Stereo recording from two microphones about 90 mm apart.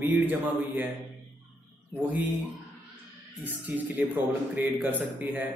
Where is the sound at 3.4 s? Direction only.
20° right (ahead or behind).